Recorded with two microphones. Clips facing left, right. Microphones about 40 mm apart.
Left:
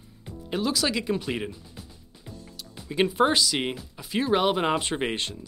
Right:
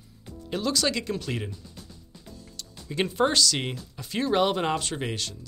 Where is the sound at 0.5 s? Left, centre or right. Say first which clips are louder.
Even; centre.